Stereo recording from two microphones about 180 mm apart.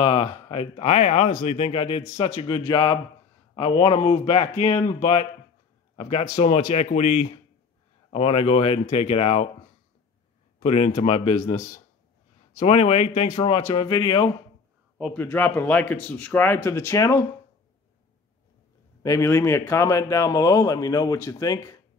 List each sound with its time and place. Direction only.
0.0 s speech: 30° left (ahead or behind)
2.7 s a man's voice: 25° left (ahead or behind)
10.6 s speech: 35° left (ahead or behind)
12.5 s speech: 35° left (ahead or behind)
15.1 s a man's voice: 10° left (ahead or behind)
19.0 s a man's voice: 15° left (ahead or behind)